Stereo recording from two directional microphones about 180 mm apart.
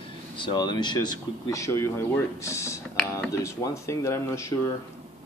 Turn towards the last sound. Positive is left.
turn(degrees=15)  # may be behind; listen again after turning